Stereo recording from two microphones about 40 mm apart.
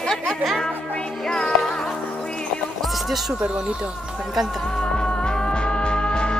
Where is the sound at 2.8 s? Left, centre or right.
Centre.